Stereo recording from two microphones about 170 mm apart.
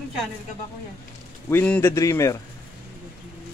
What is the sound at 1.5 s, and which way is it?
Speech, 10° left (ahead or behind).